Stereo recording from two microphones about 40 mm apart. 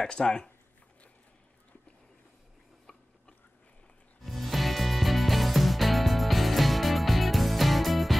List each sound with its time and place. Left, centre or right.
0.1 s speech: left
4.2 s music: centre